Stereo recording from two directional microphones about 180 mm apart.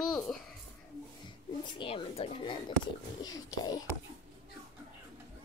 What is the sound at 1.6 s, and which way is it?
Speech, 25° left (ahead or behind).